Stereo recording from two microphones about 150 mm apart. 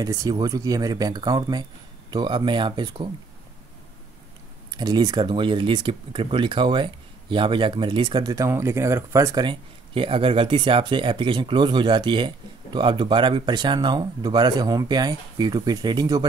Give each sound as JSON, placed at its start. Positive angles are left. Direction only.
{"t": 0.0, "sound": "speech", "side_deg": -25}
{"t": 4.6, "sound": "speech", "side_deg": -30}